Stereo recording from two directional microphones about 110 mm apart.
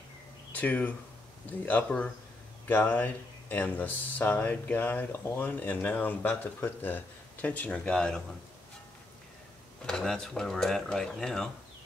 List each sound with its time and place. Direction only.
0.6 s speech: 15° left (ahead or behind)
9.8 s speech: 5° left (ahead or behind)